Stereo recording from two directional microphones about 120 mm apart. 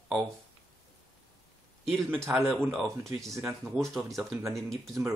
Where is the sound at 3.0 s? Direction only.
25° right (ahead or behind).